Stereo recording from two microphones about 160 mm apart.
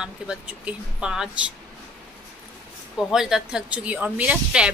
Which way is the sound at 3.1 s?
5° right (ahead or behind).